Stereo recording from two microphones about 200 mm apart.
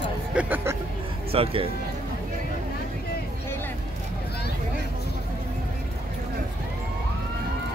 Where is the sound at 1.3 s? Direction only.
30° right (ahead or behind).